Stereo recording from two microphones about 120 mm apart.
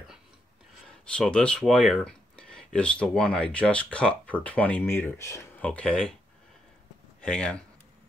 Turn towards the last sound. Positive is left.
turn(degrees=10)  # may be behind; listen again after turning